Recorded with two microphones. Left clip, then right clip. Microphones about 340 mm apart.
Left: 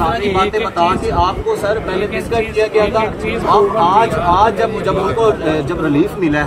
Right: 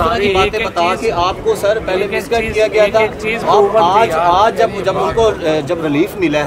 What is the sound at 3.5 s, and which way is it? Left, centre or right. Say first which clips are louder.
Speech: right 1 dB; right.